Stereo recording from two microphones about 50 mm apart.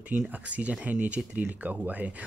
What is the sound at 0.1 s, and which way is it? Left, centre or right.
Speech, right.